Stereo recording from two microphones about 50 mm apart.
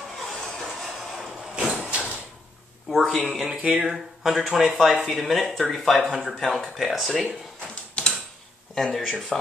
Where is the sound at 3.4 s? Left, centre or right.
Right.